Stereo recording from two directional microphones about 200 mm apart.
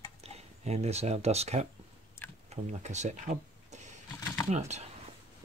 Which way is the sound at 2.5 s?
35° right (ahead or behind).